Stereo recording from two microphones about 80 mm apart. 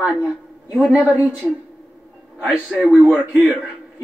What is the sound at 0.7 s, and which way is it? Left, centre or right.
A man's voice, centre.